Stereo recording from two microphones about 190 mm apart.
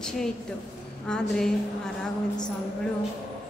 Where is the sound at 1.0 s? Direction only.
5° left (ahead or behind).